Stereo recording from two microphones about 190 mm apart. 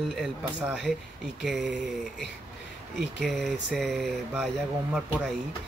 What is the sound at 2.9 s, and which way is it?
Speech, centre (ahead or behind).